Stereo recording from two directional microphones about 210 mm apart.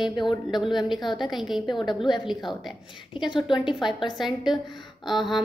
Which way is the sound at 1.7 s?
20° left (ahead or behind).